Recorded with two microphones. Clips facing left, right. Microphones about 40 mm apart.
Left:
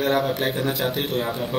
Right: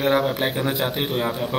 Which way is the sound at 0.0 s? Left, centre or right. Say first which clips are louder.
Right 1 dB; centre.